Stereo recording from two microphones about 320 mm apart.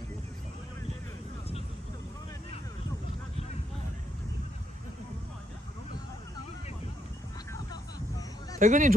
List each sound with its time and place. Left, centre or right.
8.5 s speech: right